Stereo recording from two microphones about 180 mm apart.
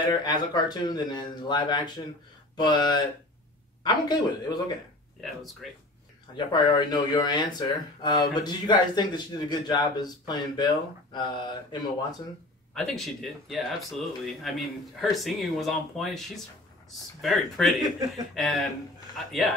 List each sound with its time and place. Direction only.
0.0 s speech: 25° left (ahead or behind)
2.5 s a sound: 25° left (ahead or behind)
3.8 s speech: 25° left (ahead or behind)
5.2 s speech: centre (ahead or behind)
6.3 s speech: 25° left (ahead or behind)
12.7 s speech: centre (ahead or behind)